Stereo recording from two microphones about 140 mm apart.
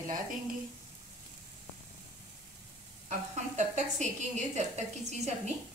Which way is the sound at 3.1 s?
60° right (ahead or behind).